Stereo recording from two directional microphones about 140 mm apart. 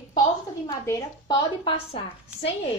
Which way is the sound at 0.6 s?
20° left (ahead or behind).